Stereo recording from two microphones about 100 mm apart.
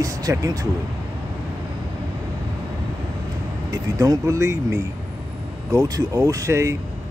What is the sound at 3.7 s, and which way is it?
Speech, 35° right (ahead or behind).